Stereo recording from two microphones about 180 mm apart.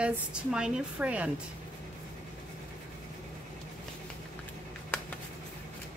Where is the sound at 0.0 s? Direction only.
5° right (ahead or behind).